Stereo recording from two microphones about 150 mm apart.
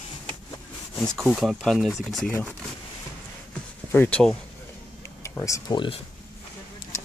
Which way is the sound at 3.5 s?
10° left (ahead or behind).